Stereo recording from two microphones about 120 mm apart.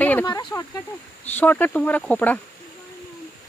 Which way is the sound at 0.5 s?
30° left (ahead or behind).